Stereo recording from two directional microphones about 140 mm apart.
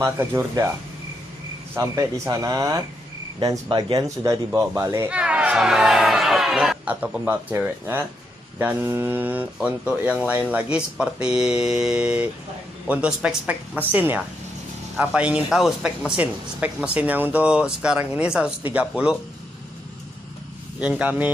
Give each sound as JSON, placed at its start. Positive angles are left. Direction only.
{"t": 0.0, "sound": "speech", "side_deg": -15}
{"t": 1.8, "sound": "speech", "side_deg": -25}
{"t": 5.1, "sound": "speech", "side_deg": -10}
{"t": 21.0, "sound": "speech", "side_deg": -10}